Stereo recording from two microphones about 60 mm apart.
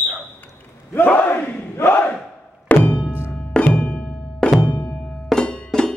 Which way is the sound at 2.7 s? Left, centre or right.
Left.